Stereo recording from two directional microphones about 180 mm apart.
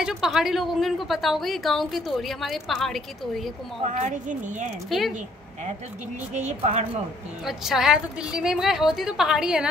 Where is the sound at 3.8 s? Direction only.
40° right (ahead or behind).